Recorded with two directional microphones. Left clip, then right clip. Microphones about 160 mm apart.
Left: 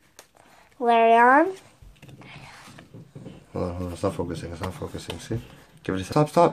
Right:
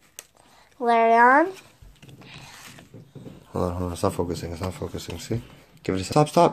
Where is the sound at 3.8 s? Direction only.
25° right (ahead or behind).